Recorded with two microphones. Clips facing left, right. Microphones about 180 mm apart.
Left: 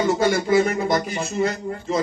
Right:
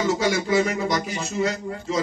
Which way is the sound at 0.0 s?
55° left (ahead or behind).